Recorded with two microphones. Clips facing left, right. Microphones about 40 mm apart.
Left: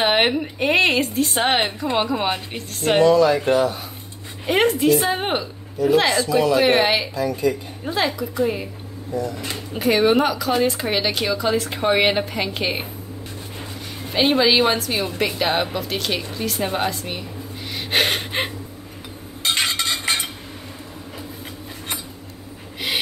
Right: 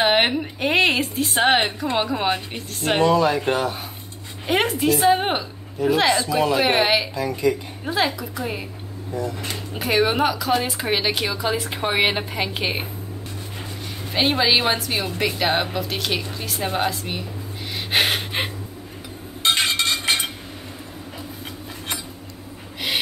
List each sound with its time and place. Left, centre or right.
0.0 s a woman's voice: centre
3.0 s speech: right
4.5 s a woman's voice: centre
6.3 s speech: right
6.7 s a woman's voice: centre
7.2 s speech: right
7.8 s a woman's voice: centre
9.1 s speech: right
9.8 s a woman's voice: centre
14.1 s a woman's voice: centre
17.7 s gasp: centre